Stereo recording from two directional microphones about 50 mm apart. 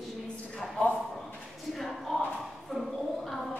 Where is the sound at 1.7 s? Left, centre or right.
Centre.